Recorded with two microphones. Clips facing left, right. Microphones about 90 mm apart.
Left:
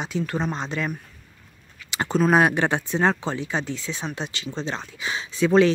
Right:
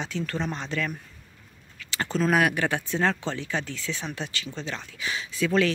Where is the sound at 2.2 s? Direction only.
30° left (ahead or behind).